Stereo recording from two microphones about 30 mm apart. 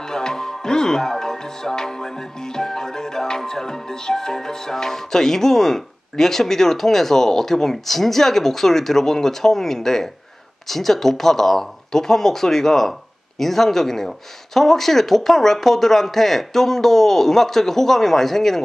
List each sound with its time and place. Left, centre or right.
0.0 s music: left